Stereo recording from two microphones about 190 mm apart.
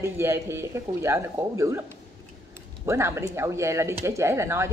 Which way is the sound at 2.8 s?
15° right (ahead or behind).